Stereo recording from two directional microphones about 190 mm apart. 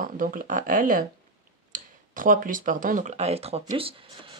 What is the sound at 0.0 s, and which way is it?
Speech, 45° right (ahead or behind).